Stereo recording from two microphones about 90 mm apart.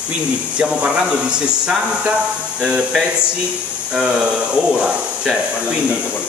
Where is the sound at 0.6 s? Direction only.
10° right (ahead or behind).